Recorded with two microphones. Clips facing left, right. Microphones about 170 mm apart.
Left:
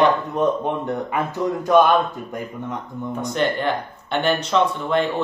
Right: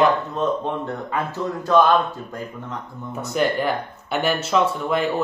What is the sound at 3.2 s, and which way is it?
Speech, 5° right (ahead or behind).